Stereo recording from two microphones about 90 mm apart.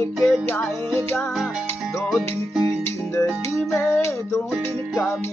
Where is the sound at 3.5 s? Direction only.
30° left (ahead or behind).